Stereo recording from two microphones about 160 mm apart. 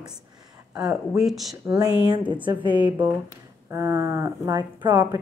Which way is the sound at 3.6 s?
20° right (ahead or behind).